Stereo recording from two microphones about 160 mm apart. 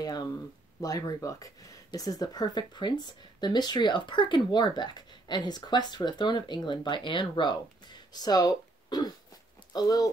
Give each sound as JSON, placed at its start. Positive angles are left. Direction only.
{"t": 0.7, "sound": "speech", "side_deg": 20}